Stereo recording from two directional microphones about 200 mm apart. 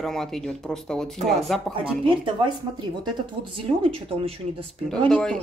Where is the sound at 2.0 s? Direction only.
25° right (ahead or behind).